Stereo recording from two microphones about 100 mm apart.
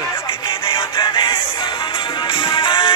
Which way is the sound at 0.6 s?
50° left (ahead or behind).